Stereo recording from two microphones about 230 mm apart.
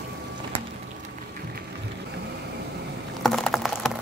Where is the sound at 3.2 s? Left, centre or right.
Centre.